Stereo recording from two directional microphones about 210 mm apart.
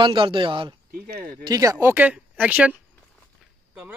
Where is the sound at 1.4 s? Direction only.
15° right (ahead or behind).